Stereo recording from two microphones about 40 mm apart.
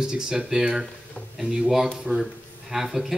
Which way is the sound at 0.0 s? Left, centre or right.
Right.